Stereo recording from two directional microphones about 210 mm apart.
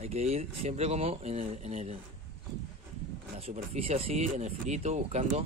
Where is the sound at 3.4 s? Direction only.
30° right (ahead or behind).